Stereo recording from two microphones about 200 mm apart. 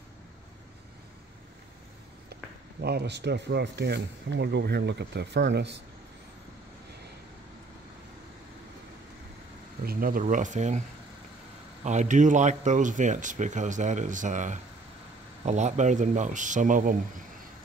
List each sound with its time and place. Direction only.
2.8 s speech: 55° right (ahead or behind)
9.8 s speech: 45° right (ahead or behind)
11.8 s speech: 35° right (ahead or behind)